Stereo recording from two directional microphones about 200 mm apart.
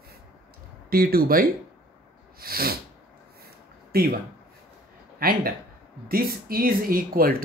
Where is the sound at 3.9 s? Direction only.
50° right (ahead or behind).